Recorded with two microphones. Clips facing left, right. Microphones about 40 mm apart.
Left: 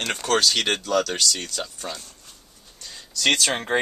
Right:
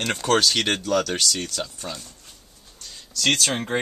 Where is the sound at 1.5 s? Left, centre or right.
Centre.